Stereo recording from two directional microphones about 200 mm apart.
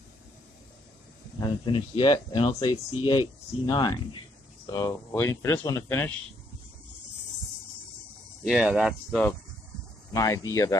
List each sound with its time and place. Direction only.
1.4 s speech: 25° left (ahead or behind)
8.5 s speech: 5° right (ahead or behind)
10.1 s speech: 15° left (ahead or behind)